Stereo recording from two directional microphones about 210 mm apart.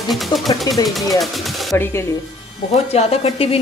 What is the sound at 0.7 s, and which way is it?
Speech, 20° left (ahead or behind).